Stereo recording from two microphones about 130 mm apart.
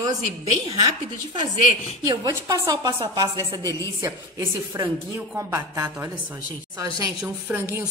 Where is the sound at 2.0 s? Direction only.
30° right (ahead or behind).